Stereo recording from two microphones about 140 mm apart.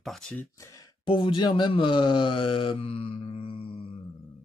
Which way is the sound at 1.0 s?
35° left (ahead or behind).